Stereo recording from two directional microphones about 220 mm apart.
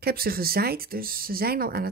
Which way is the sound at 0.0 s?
45° right (ahead or behind).